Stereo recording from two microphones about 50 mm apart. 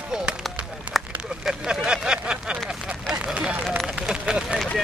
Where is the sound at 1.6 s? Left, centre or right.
Centre.